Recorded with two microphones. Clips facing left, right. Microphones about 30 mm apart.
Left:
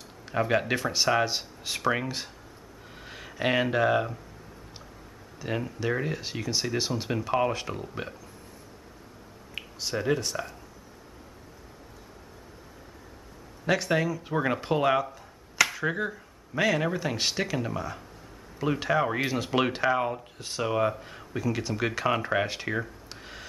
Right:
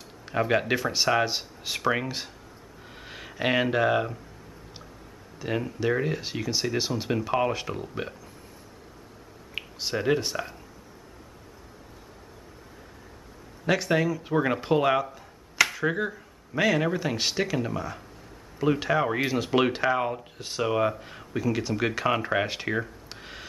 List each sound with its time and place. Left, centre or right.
0.2 s speech: centre
5.4 s speech: centre
9.6 s speech: centre
13.7 s speech: centre